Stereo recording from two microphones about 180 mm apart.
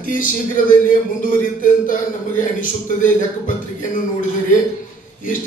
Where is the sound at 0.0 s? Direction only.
45° left (ahead or behind).